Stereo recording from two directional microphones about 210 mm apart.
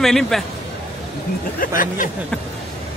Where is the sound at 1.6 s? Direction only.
40° left (ahead or behind).